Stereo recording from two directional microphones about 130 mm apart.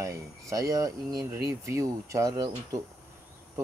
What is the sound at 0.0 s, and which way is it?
Speech, 25° right (ahead or behind).